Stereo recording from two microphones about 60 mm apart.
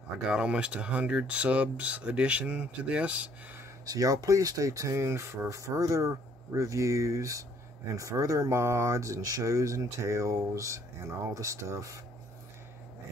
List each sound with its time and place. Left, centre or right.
0.3 s speech: centre
3.8 s speech: right